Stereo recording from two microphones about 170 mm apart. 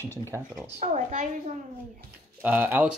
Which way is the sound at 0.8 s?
45° right (ahead or behind).